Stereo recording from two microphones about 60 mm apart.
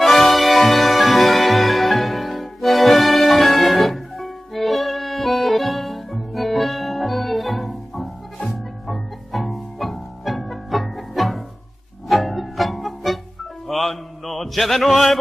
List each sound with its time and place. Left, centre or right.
0.0 s music: centre
13.7 s mantra: centre